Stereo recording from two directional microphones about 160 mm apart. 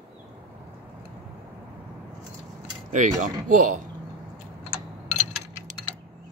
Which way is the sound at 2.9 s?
50° right (ahead or behind).